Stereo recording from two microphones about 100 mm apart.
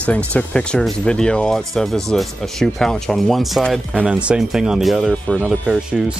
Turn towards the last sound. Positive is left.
turn(degrees=-5)  # may be behind; listen again after turning